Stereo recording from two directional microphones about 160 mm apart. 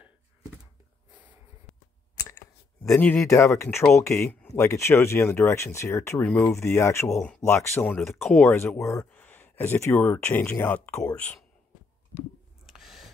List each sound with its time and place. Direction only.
2.1 s clicking: 20° left (ahead or behind)
3.3 s speech: 20° left (ahead or behind)
7.2 s speech: 5° left (ahead or behind)
8.2 s speech: centre (ahead or behind)
8.5 s speech: 15° left (ahead or behind)
12.6 s a sound: centre (ahead or behind)